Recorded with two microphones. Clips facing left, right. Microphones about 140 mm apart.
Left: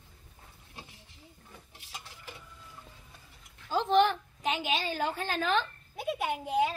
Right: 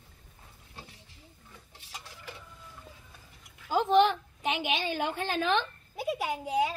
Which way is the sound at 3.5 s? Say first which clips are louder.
Right 2 dB; 10° right (ahead or behind).